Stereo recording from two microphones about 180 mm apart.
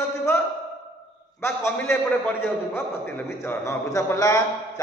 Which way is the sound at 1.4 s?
15° left (ahead or behind).